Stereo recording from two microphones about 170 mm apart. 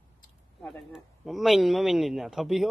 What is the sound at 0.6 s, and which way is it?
A man's voice, 5° left (ahead or behind).